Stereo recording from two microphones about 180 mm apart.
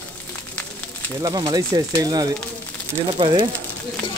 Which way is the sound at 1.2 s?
20° right (ahead or behind).